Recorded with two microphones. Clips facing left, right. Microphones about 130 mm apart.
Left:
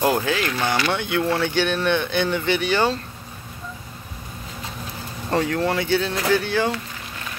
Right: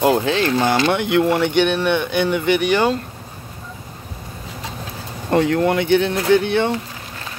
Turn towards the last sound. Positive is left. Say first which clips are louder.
# right 5 dB
turn(degrees=-25)  # may be behind; listen again after turning